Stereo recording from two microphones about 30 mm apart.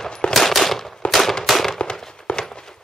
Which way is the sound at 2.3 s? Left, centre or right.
Left.